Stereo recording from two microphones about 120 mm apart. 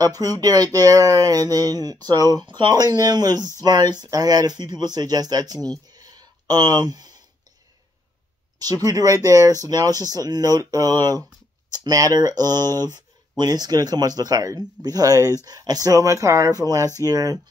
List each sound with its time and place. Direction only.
0.0 s speech: 30° right (ahead or behind)
8.8 s speech: 30° right (ahead or behind)